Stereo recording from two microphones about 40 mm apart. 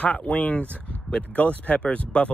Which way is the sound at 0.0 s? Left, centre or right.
Left.